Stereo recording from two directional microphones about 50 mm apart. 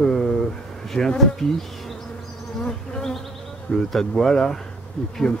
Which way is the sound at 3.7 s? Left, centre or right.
Centre.